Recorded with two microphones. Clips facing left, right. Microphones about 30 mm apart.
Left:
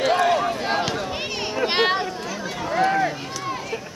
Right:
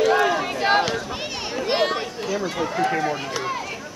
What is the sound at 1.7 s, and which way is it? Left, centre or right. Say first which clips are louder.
Chatter: even; left.